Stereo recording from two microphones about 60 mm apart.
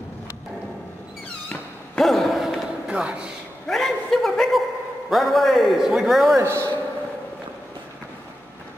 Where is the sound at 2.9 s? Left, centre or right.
Centre.